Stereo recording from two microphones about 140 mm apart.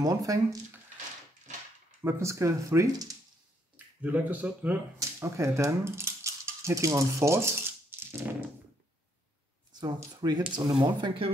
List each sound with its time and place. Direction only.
0.0 s speech: 25° right (ahead or behind)
2.0 s speech: 20° right (ahead or behind)
3.7 s speech: 10° right (ahead or behind)
9.7 s speech: 30° right (ahead or behind)